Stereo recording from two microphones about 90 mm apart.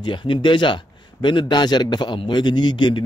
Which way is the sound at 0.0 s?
60° left (ahead or behind).